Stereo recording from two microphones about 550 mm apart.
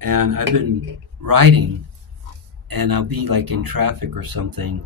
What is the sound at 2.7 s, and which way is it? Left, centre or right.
Speech, right.